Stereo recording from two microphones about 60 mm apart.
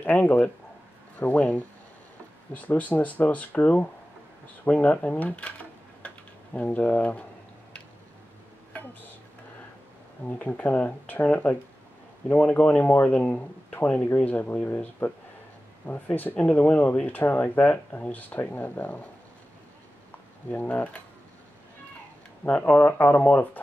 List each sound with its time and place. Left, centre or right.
0.0 s speech: left
8.7 s a sound: left
10.2 s speech: left
15.9 s speech: left
20.4 s speech: left
22.4 s speech: left